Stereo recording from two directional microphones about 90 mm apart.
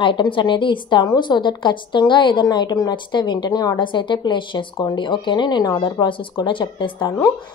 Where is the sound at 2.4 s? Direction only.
50° left (ahead or behind).